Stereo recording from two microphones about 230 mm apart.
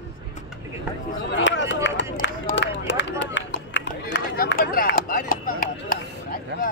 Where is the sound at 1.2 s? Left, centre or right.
Left.